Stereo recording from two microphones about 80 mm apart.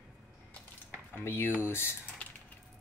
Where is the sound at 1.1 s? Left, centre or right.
Left.